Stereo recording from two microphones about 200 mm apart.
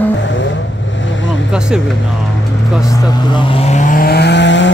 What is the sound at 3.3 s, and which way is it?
Vehicle, 30° left (ahead or behind).